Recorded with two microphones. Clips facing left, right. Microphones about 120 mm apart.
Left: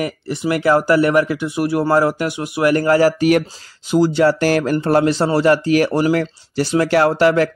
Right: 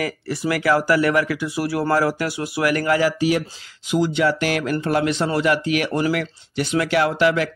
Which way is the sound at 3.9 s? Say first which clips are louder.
Left 5 dB; 35° left (ahead or behind).